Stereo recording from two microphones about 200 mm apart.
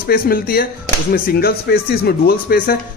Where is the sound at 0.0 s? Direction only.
50° left (ahead or behind).